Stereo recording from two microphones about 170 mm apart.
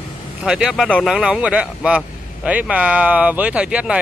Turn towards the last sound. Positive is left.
turn(degrees=-5)  # may be behind; listen again after turning